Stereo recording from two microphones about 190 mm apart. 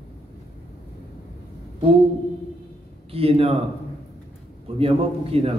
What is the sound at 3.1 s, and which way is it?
Speech, 30° right (ahead or behind).